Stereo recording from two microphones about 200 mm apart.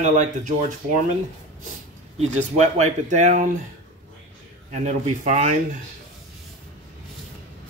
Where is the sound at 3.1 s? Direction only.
40° right (ahead or behind).